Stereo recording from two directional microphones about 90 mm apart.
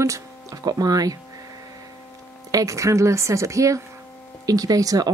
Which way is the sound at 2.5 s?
35° right (ahead or behind).